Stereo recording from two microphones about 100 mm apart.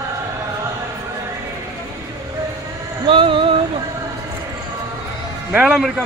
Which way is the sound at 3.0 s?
60° right (ahead or behind).